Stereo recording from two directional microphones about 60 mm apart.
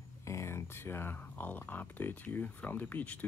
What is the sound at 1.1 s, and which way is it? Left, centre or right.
Speech, left.